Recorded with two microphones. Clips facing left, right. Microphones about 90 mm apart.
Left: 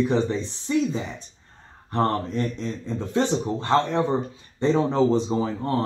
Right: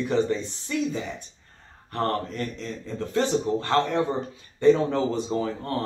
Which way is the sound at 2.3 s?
20° left (ahead or behind).